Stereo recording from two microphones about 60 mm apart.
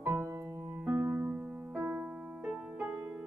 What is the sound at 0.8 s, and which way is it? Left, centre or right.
Music, right.